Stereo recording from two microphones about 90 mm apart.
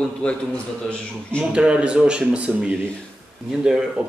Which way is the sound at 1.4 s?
10° right (ahead or behind).